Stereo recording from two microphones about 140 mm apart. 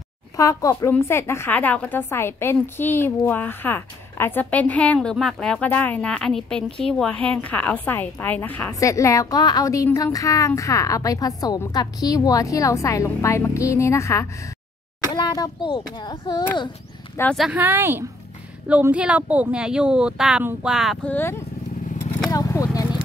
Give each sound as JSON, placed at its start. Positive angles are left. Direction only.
{"t": 0.4, "sound": "a woman's voice", "side_deg": 25}
{"t": 8.7, "sound": "a woman's voice", "side_deg": 20}
{"t": 17.4, "sound": "speech", "side_deg": -10}
{"t": 21.1, "sound": "a woman's voice", "side_deg": 15}
{"t": 22.3, "sound": "a sound", "side_deg": 25}